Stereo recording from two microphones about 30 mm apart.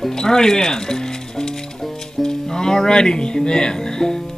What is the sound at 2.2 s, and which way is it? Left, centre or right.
Music, left.